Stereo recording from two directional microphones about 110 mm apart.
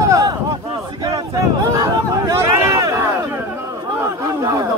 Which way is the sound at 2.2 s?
25° right (ahead or behind).